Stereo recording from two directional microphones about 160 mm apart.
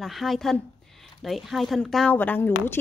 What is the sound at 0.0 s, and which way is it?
A woman's voice, centre (ahead or behind).